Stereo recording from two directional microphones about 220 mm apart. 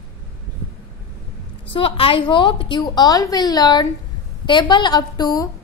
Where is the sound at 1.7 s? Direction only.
25° left (ahead or behind).